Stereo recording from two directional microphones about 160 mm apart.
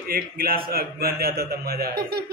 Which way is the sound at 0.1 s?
65° right (ahead or behind).